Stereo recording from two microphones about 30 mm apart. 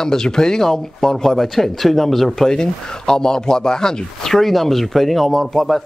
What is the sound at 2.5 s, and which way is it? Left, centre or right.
Speech, left.